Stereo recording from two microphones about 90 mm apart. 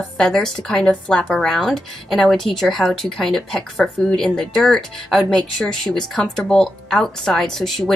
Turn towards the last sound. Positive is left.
turn(degrees=5)  # may be behind; listen again after turning